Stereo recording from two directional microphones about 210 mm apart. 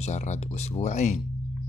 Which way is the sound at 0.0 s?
35° left (ahead or behind).